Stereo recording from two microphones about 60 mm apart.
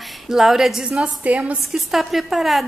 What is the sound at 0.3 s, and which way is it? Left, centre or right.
Speech, centre.